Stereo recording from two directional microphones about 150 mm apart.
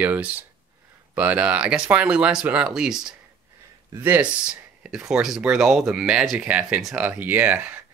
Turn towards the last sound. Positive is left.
turn(degrees=-10)  # may be behind; listen again after turning